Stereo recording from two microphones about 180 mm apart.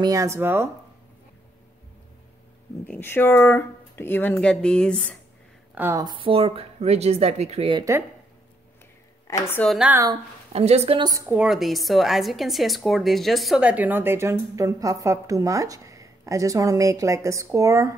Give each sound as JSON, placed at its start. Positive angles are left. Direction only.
{"t": 0.0, "sound": "a woman's voice", "side_deg": -20}
{"t": 2.9, "sound": "speech", "side_deg": 10}
{"t": 5.8, "sound": "speech", "side_deg": -15}
{"t": 9.3, "sound": "speech", "side_deg": 15}
{"t": 9.7, "sound": "a woman's voice", "side_deg": -5}
{"t": 10.5, "sound": "speech", "side_deg": -35}
{"t": 11.2, "sound": "a woman's voice", "side_deg": -5}